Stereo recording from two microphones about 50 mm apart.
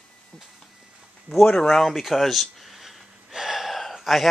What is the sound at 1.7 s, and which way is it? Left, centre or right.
Gasp, centre.